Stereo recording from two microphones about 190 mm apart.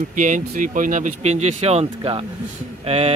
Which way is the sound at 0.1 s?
45° right (ahead or behind).